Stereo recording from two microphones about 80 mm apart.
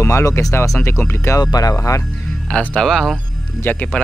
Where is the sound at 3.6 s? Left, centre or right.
Left.